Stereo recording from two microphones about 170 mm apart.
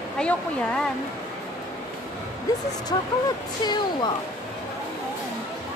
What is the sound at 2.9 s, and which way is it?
Speech, 25° left (ahead or behind).